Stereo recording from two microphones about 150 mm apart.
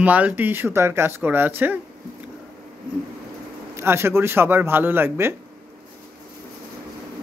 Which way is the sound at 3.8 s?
15° right (ahead or behind).